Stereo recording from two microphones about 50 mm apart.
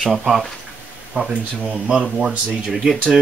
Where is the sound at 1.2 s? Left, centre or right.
Right.